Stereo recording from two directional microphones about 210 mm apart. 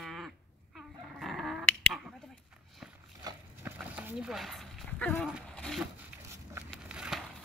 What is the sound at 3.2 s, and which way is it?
Horse, 20° right (ahead or behind).